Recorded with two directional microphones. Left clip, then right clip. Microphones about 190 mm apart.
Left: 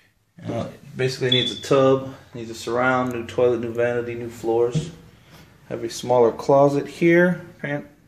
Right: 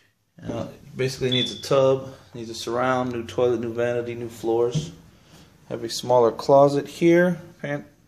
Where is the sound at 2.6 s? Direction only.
10° right (ahead or behind).